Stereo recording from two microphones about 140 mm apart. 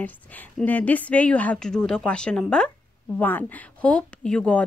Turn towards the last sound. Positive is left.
turn(degrees=5)  # may be behind; listen again after turning